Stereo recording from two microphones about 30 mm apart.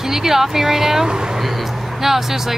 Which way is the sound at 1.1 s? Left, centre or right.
Right.